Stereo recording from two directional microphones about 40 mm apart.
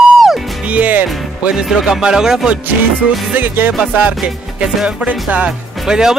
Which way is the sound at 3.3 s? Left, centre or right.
Right.